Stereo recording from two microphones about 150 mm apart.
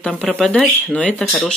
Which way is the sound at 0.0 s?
5° left (ahead or behind).